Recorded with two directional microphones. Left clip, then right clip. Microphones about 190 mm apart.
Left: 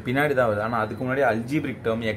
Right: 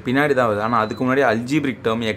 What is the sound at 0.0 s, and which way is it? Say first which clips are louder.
Speech: right 4 dB; 20° right (ahead or behind).